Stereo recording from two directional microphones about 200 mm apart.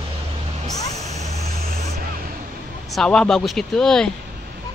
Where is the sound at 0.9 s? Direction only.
35° right (ahead or behind).